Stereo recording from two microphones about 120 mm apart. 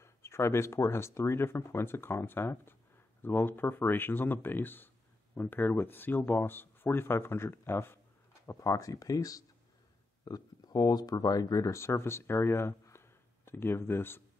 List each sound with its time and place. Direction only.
0.0 s speech: 20° left (ahead or behind)